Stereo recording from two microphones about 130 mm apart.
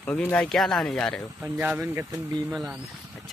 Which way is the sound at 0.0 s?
10° left (ahead or behind).